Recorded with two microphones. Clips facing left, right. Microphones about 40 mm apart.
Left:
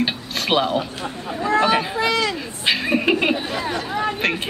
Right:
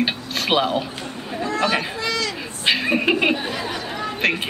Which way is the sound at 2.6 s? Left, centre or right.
Centre.